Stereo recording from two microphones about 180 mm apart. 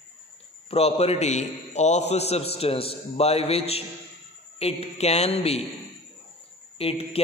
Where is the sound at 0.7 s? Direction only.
35° left (ahead or behind).